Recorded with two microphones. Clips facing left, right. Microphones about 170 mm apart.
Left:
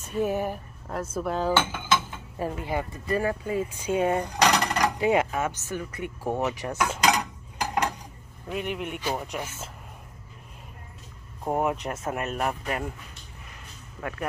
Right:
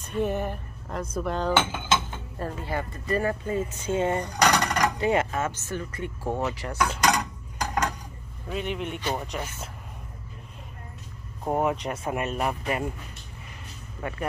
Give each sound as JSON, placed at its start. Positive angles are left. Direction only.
{"t": 0.0, "sound": "speech", "side_deg": 5}
{"t": 1.5, "sound": "cutlery", "side_deg": -20}
{"t": 2.3, "sound": "speech", "side_deg": 15}
{"t": 8.5, "sound": "speech", "side_deg": 5}
{"t": 11.4, "sound": "speech", "side_deg": 5}
{"t": 14.0, "sound": "speech", "side_deg": 0}